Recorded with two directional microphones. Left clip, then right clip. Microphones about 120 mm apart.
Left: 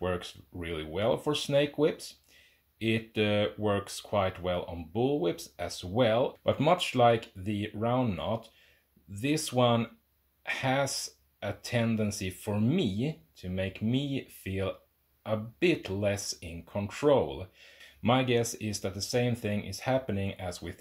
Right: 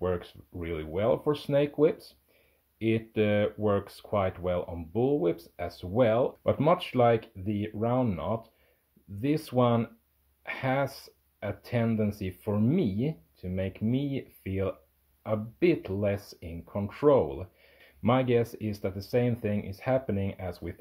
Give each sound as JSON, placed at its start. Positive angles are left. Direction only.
{"t": 0.0, "sound": "speech", "side_deg": -20}